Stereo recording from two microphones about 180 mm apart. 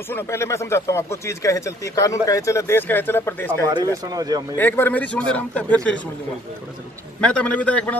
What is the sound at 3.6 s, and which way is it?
Speech, 20° right (ahead or behind).